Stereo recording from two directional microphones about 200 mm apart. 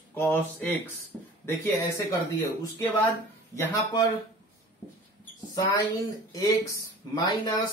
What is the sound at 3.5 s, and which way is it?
Speech, 15° left (ahead or behind).